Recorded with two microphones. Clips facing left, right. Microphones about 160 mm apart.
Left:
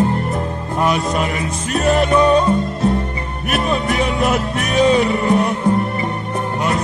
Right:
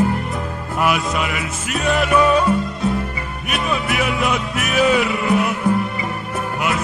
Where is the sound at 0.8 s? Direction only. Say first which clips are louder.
Left 2 dB; 35° left (ahead or behind).